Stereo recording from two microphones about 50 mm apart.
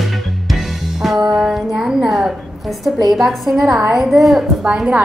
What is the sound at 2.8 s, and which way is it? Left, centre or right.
A woman's voice, centre.